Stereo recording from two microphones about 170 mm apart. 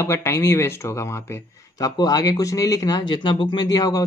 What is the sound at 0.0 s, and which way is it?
Speech, 15° left (ahead or behind).